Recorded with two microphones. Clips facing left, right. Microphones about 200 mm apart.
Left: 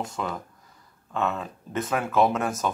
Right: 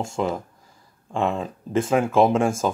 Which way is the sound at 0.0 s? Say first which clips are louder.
Right 6 dB; 25° right (ahead or behind).